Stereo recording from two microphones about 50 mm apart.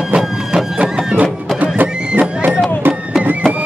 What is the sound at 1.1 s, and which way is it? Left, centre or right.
Music, right.